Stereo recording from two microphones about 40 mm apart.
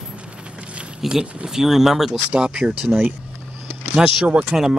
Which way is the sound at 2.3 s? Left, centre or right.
Right.